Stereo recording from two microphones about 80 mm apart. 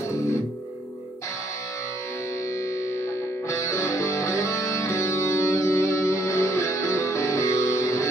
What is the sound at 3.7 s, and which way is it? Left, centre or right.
Music, left.